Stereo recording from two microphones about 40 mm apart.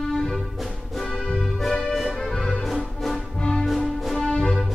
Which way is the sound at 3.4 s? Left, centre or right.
Centre.